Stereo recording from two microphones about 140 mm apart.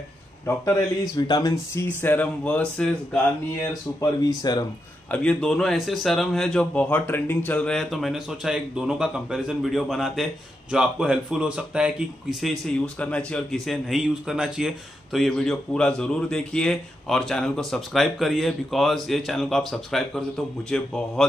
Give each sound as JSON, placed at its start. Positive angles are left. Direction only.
{"t": 0.7, "sound": "speech", "side_deg": 25}
{"t": 2.0, "sound": "speech", "side_deg": 15}
{"t": 4.4, "sound": "speech", "side_deg": 30}
{"t": 5.1, "sound": "a man's voice", "side_deg": 10}